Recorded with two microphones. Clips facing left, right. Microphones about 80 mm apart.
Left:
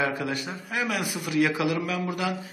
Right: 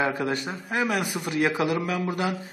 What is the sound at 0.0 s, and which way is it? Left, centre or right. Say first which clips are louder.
A man's voice: right 2 dB; right.